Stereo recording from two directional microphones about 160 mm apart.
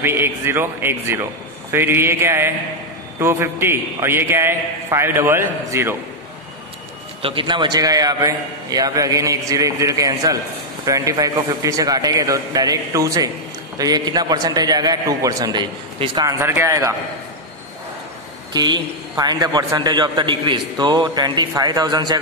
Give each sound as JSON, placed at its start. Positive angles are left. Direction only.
{"t": 0.0, "sound": "a man's voice", "side_deg": -15}
{"t": 7.2, "sound": "a man's voice", "side_deg": -35}
{"t": 16.3, "sound": "a man's voice", "side_deg": -15}
{"t": 18.5, "sound": "a man's voice", "side_deg": -25}